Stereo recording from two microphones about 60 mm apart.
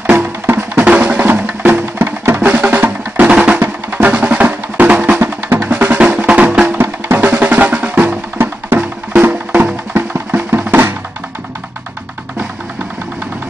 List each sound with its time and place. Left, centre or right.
0.2 s music: right
0.8 s music: right
3.3 s drum: centre
3.5 s music: right
5.2 s drum: right
6.2 s music: centre
6.7 s music: right
8.4 s music: right
8.7 s music: right